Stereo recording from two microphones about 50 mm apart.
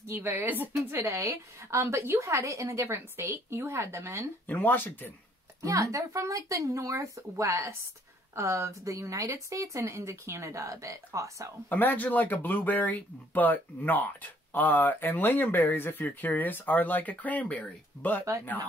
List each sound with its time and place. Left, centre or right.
0.2 s a woman's voice: right
0.8 s a woman's voice: right
2.9 s speech: right
4.5 s speech: left
5.6 s speech: right
8.4 s speech: right
11.7 s speech: left